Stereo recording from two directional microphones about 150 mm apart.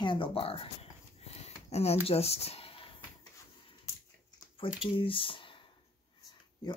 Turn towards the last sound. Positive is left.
turn(degrees=35)  # may be behind; listen again after turning